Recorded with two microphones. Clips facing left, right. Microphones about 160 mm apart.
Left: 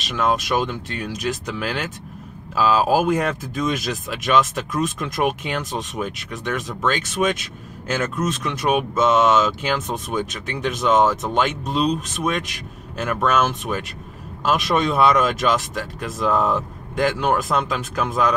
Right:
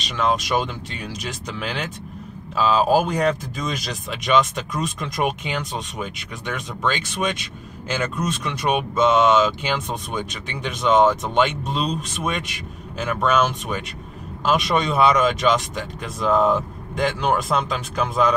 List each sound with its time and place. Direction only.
0.0 s speech: 5° left (ahead or behind)